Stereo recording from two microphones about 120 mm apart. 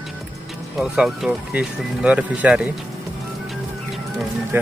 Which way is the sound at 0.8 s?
5° right (ahead or behind).